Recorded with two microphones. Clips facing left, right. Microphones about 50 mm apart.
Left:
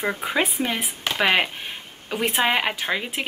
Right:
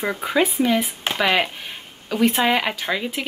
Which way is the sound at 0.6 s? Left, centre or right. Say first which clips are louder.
Right 5 dB; left.